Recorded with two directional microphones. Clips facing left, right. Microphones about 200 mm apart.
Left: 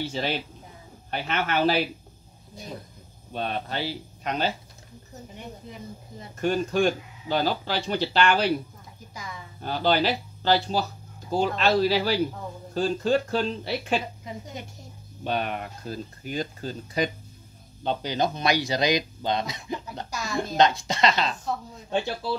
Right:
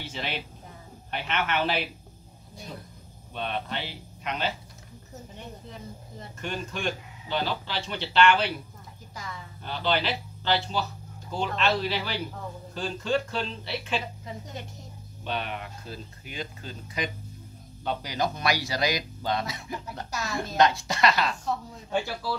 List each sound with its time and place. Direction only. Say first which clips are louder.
0.0 s speech: left 6 dB; 35° left (ahead or behind)
3.3 s speech: left 3 dB; 40° left (ahead or behind)
6.4 s speech: left 9 dB; 40° left (ahead or behind)
9.1 s a woman's voice: even; 15° left (ahead or behind)
9.6 s speech: left 5 dB; 40° left (ahead or behind)
15.2 s speech: left 5 dB; 45° left (ahead or behind)
17.8 s speech: left 3 dB; 25° left (ahead or behind)
20.1 s a woman's voice: even; 5° right (ahead or behind)
20.3 s speech: left 2 dB; 25° left (ahead or behind)